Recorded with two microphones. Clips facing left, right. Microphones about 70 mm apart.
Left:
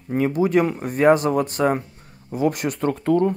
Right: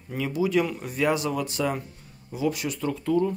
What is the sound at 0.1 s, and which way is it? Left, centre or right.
Speech, left.